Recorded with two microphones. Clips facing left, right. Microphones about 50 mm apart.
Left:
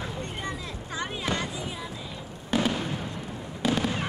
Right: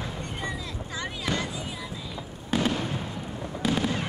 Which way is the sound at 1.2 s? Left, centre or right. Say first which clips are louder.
Right 1 dB; left.